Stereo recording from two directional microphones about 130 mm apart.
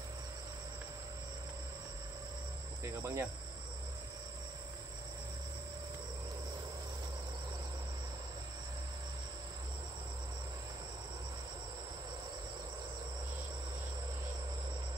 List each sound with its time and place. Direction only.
2.8 s speech: 20° right (ahead or behind)